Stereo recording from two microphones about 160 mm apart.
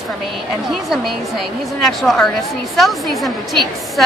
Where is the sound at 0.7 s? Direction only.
Centre (ahead or behind).